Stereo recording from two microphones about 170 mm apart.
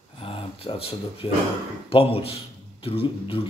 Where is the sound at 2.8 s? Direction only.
30° left (ahead or behind).